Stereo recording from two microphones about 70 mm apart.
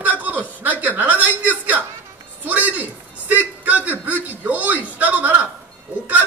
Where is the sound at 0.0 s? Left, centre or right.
Right.